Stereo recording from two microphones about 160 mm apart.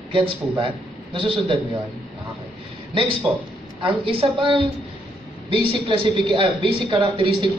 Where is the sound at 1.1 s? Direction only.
30° right (ahead or behind).